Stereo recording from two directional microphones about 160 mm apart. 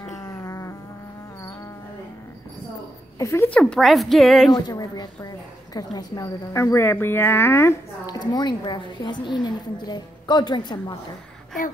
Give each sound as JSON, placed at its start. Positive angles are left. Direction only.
{"t": 0.1, "sound": "a sound", "side_deg": 15}
{"t": 3.2, "sound": "speech", "side_deg": 15}
{"t": 3.5, "sound": "speech", "side_deg": 5}
{"t": 4.5, "sound": "a woman's voice", "side_deg": 25}